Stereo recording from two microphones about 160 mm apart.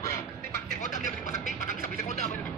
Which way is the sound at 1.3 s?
65° right (ahead or behind).